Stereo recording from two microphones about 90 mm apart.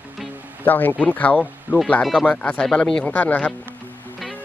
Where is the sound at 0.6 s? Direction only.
20° left (ahead or behind).